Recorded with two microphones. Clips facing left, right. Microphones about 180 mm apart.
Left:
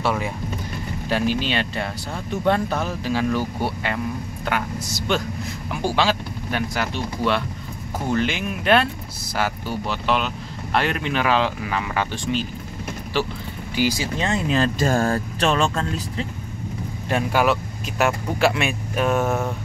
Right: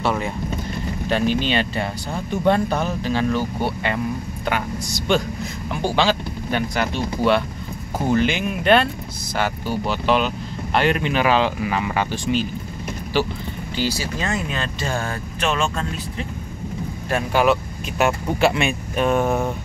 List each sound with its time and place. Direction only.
0.0 s speech: 5° left (ahead or behind)
13.7 s speech: 15° left (ahead or behind)
14.6 s speech: 40° left (ahead or behind)
17.1 s speech: 10° left (ahead or behind)
19.2 s a sound: 15° right (ahead or behind)